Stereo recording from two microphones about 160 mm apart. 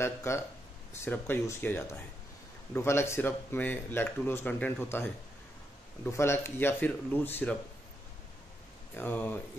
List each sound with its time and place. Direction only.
0.0 s speech: 15° left (ahead or behind)
8.9 s speech: 10° left (ahead or behind)